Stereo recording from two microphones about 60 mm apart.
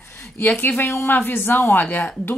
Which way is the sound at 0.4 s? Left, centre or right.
Left.